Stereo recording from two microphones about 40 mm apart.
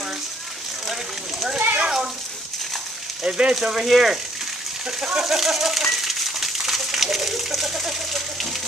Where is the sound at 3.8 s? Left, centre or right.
Centre.